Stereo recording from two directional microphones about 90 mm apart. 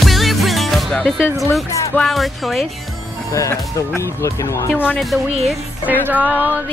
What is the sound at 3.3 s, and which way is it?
Speech, 35° left (ahead or behind).